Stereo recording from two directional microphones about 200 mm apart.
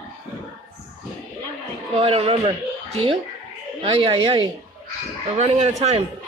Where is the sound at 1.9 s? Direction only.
30° right (ahead or behind).